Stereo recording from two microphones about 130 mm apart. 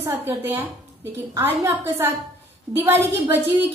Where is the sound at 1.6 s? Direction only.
15° right (ahead or behind).